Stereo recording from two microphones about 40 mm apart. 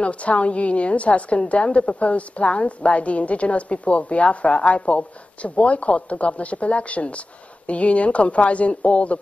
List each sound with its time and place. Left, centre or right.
0.0 s a woman's voice: left